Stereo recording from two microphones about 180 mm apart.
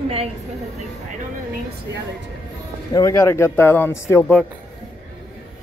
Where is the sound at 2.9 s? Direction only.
15° left (ahead or behind).